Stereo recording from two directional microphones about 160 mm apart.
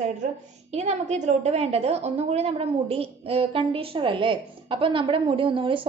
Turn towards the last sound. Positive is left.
turn(degrees=-35)  # may be behind; listen again after turning